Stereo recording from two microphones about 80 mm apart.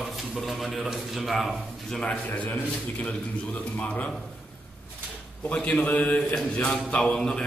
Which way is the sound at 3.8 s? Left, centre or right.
Centre.